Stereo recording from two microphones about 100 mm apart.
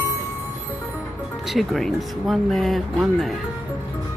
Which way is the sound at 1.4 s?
Centre (ahead or behind).